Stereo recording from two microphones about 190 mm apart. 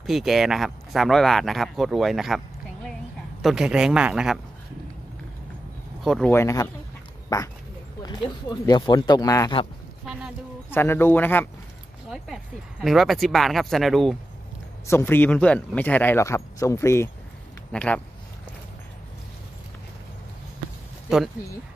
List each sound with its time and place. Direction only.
0.0 s speech: centre (ahead or behind)
6.0 s speech: centre (ahead or behind)
6.3 s speech: 15° left (ahead or behind)
10.7 s speech: 10° left (ahead or behind)
12.8 s speech: centre (ahead or behind)
14.9 s speech: 10° left (ahead or behind)
21.1 s speech: 5° right (ahead or behind)